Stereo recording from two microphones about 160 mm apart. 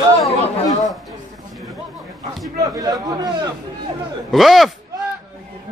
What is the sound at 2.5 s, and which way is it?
Speech, 20° right (ahead or behind).